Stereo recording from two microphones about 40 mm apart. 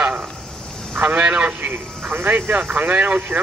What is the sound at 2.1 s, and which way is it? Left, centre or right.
Speech, right.